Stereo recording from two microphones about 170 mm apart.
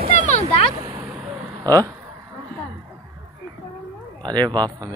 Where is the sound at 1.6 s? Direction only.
20° right (ahead or behind).